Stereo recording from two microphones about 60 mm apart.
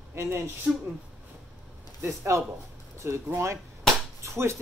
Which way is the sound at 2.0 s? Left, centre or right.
Right.